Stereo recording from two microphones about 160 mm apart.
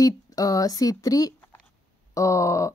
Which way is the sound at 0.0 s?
20° left (ahead or behind).